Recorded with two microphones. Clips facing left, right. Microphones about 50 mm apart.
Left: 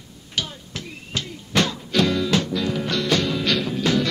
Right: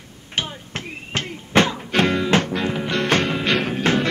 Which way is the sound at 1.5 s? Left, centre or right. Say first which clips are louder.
Right 3 dB; right.